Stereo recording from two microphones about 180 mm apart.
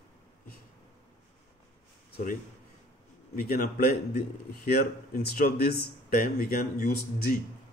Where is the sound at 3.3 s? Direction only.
60° left (ahead or behind).